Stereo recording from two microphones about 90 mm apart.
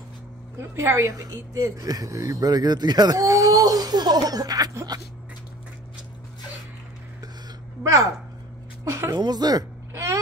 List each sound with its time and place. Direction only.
0.6 s speech: 30° right (ahead or behind); by 5.0 s 45° right (ahead or behind)
7.8 s speech: 35° right (ahead or behind)
8.8 s a sound: 30° right (ahead or behind)
9.1 s speech: 50° right (ahead or behind)